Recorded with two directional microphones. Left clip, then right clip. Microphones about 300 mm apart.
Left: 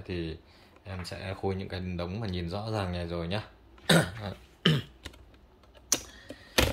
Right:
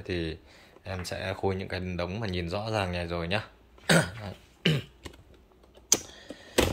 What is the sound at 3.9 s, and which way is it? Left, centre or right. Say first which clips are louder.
Cough: right 1 dB; centre.